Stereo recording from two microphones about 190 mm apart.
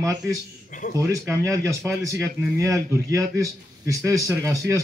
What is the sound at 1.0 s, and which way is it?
A man's voice, 15° right (ahead or behind).